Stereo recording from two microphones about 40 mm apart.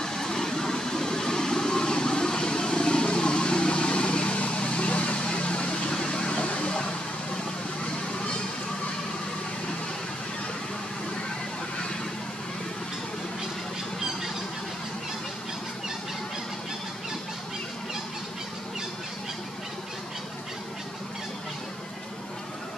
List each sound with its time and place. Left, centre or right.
0.0 s vehicle: centre